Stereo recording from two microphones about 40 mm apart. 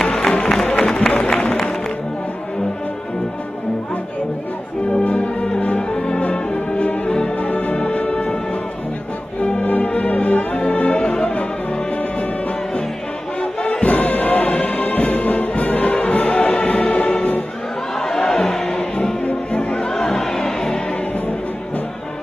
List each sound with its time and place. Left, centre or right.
0.0 s music: centre
4.8 s music: left
7.4 s music: left
9.4 s music: left
11.0 s music: centre
13.7 s music: left
18.0 s crowd: centre
19.5 s music: centre